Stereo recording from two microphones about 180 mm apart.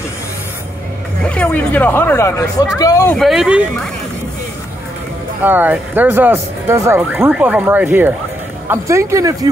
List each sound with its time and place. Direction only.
1.2 s speech: 10° left (ahead or behind)
3.2 s speech: centre (ahead or behind)
5.4 s speech: 10° right (ahead or behind)